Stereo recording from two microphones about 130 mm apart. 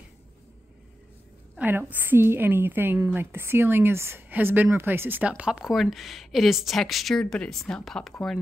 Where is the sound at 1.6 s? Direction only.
15° right (ahead or behind).